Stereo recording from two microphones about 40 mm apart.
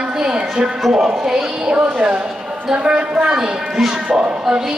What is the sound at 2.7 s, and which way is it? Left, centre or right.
A man's voice, right.